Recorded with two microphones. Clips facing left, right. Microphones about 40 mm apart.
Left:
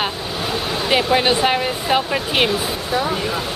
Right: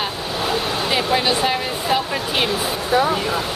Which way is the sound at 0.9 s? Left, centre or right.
Centre.